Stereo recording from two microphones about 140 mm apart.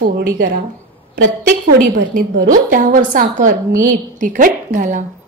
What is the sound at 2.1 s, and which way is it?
A woman's voice, 75° right (ahead or behind).